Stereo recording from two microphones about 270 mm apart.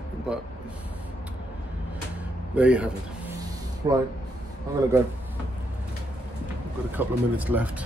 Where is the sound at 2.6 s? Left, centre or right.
Centre.